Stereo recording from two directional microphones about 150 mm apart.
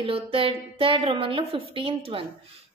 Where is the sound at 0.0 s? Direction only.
40° right (ahead or behind).